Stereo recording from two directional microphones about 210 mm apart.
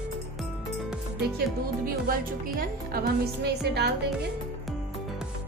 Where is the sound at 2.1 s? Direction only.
45° right (ahead or behind).